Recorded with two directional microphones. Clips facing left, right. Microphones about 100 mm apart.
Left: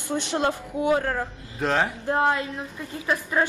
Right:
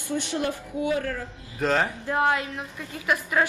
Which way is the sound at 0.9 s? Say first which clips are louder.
Left 7 dB; 50° left (ahead or behind).